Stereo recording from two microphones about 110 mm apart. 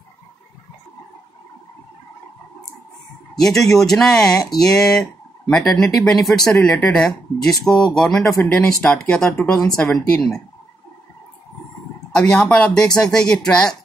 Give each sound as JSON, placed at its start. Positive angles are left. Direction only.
{"t": 3.3, "sound": "speech", "side_deg": 5}
{"t": 8.4, "sound": "speech", "side_deg": 15}
{"t": 8.6, "sound": "speech", "side_deg": 5}
{"t": 12.1, "sound": "speech", "side_deg": 5}